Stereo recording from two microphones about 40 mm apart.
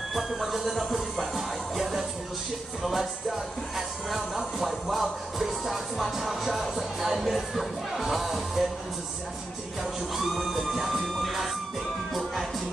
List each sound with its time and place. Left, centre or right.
0.1 s music: centre
10.1 s music: centre